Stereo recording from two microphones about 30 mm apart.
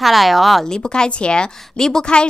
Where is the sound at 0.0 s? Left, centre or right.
Centre.